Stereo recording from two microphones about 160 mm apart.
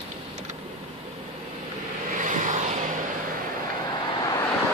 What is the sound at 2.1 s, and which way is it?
Vehicle, 55° right (ahead or behind).